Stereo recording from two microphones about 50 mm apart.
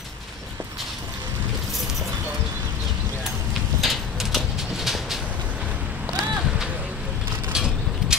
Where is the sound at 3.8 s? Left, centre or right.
Centre.